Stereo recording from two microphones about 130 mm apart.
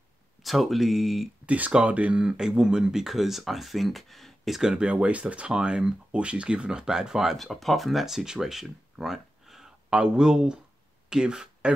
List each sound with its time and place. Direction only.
0.4 s speech: centre (ahead or behind)